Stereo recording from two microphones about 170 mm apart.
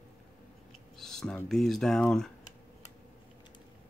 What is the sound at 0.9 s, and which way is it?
Speech, centre (ahead or behind).